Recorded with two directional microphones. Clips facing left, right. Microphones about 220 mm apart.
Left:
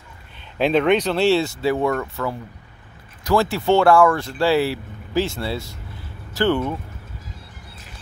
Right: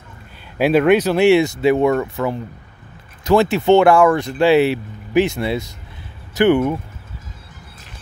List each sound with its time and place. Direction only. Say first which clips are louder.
0.6 s speech: right 4 dB; 10° right (ahead or behind)